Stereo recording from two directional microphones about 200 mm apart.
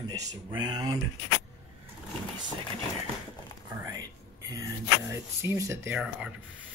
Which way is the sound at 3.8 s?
15° right (ahead or behind).